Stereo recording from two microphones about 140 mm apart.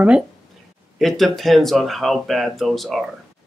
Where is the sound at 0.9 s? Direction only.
Centre (ahead or behind).